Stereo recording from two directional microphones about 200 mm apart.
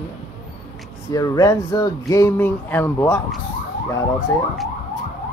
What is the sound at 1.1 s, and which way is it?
Speech, 20° left (ahead or behind).